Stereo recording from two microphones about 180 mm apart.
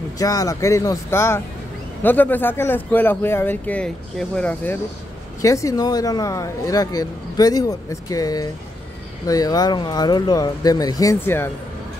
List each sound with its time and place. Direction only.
0.2 s speech: 20° left (ahead or behind)